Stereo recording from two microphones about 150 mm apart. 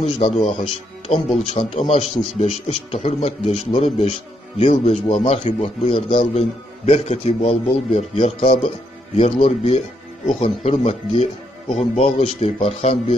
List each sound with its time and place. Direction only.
0.0 s a man's voice: 45° left (ahead or behind)